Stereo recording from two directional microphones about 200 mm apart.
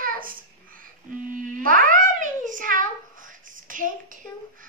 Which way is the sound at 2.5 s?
45° right (ahead or behind).